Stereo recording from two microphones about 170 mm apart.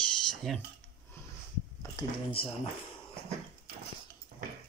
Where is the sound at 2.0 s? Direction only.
20° left (ahead or behind).